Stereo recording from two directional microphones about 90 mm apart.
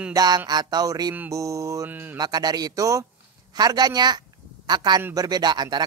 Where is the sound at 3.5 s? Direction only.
50° right (ahead or behind).